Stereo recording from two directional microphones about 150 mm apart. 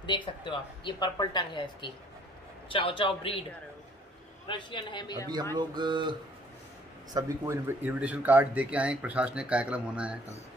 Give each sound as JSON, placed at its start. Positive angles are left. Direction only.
{"t": 0.0, "sound": "speech", "side_deg": 30}
{"t": 4.5, "sound": "speech", "side_deg": 35}
{"t": 5.3, "sound": "speech", "side_deg": -30}
{"t": 7.2, "sound": "speech", "side_deg": -15}